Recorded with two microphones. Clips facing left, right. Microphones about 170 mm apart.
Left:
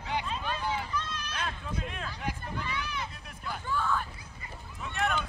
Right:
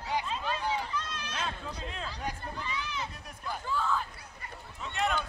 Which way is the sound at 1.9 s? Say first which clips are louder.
Even; 30° right (ahead or behind).